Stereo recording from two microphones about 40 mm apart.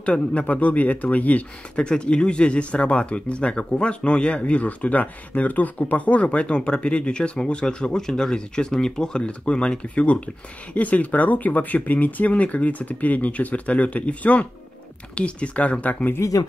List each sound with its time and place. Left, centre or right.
0.0 s speech: left
1.8 s speech: left